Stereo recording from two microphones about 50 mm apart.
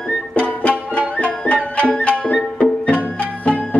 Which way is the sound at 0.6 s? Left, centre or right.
Left.